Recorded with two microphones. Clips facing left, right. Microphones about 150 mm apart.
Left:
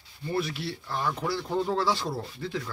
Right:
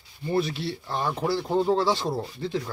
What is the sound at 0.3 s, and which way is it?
Speech, 25° right (ahead or behind).